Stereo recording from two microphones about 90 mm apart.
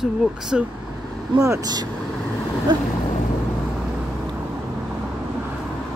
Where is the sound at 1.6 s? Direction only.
50° right (ahead or behind).